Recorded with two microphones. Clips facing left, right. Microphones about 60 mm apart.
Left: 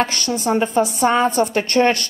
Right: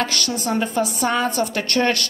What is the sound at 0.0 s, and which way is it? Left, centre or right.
A woman's voice, left.